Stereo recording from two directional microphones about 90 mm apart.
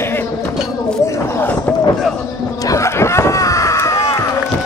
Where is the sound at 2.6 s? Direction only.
35° left (ahead or behind).